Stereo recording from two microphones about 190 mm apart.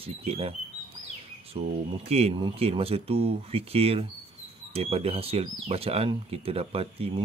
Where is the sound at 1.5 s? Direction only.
30° right (ahead or behind).